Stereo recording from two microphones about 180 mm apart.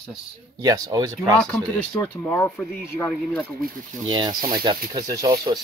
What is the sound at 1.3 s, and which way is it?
Speech, 5° left (ahead or behind).